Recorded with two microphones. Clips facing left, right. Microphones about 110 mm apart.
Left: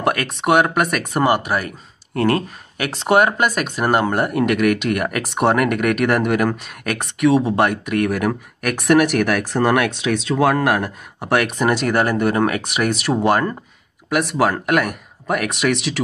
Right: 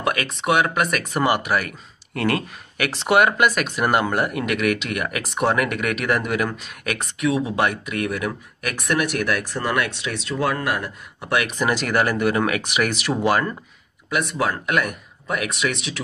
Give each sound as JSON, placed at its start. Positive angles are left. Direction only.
{"t": 0.3, "sound": "speech", "side_deg": 60}
{"t": 0.9, "sound": "speech", "side_deg": 45}
{"t": 7.3, "sound": "speech", "side_deg": 60}
{"t": 9.6, "sound": "speech", "side_deg": 90}
{"t": 11.1, "sound": "speech", "side_deg": 50}
{"t": 14.3, "sound": "speech", "side_deg": 60}